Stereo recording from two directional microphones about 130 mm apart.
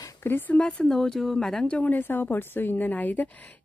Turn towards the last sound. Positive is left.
turn(degrees=15)  # may be behind; listen again after turning